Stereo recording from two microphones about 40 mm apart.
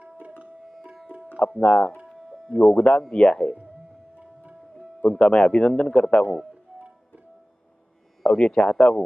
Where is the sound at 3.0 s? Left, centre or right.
Left.